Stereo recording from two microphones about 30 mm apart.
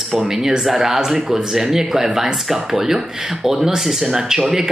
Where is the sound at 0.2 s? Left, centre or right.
Centre.